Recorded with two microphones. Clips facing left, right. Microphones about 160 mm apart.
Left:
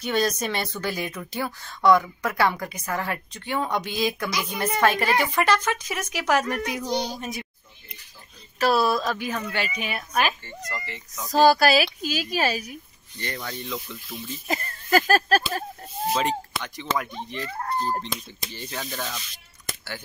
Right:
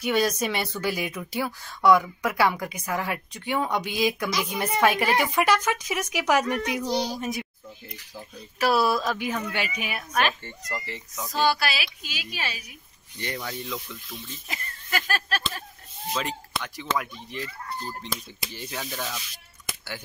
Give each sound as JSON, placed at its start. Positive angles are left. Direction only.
{"t": 0.0, "sound": "speech", "side_deg": -10}
{"t": 6.4, "sound": "speech", "side_deg": 0}
{"t": 8.5, "sound": "speech", "side_deg": -10}
{"t": 11.2, "sound": "a woman's voice", "side_deg": 40}
{"t": 13.2, "sound": "speech", "side_deg": -10}
{"t": 14.5, "sound": "a sound", "side_deg": 45}
{"t": 16.1, "sound": "speech", "side_deg": 0}
{"t": 17.5, "sound": "a woman's voice", "side_deg": 50}
{"t": 18.0, "sound": "speech", "side_deg": -5}